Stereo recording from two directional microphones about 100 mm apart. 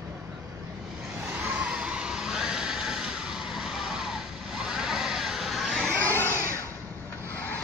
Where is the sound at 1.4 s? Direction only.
10° right (ahead or behind).